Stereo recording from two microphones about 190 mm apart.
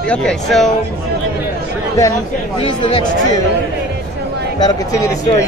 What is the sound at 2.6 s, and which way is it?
Speech, 25° left (ahead or behind).